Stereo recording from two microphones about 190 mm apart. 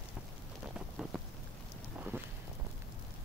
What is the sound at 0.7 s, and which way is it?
Rain, 5° right (ahead or behind).